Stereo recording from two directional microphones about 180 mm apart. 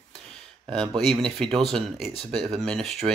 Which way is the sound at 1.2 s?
5° left (ahead or behind).